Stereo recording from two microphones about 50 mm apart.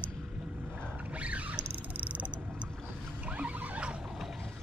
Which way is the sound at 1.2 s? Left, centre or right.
Right.